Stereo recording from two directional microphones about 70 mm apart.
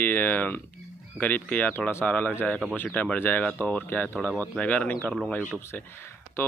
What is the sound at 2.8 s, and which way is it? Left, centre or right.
Speech, centre.